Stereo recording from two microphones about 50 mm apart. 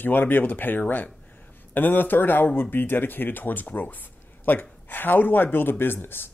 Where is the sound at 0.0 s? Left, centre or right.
Left.